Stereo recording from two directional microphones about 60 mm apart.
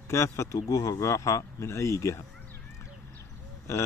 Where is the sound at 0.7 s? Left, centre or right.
Left.